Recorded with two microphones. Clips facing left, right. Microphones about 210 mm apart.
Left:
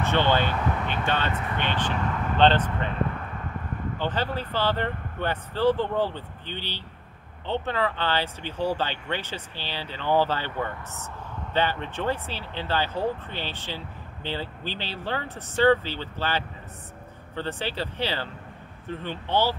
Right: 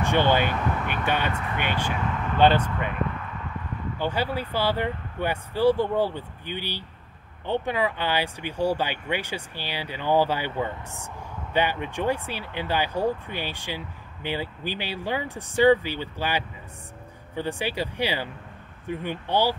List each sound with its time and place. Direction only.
0.0 s speech: 15° right (ahead or behind)
4.0 s speech: 10° right (ahead or behind)